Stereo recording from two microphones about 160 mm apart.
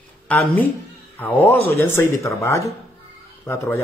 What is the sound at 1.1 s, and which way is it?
Speech, 15° left (ahead or behind).